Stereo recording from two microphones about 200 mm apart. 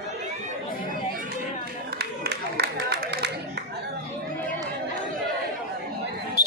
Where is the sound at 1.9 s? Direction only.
50° right (ahead or behind).